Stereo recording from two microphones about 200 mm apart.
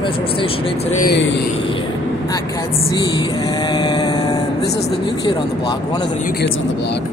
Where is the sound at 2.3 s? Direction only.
20° left (ahead or behind).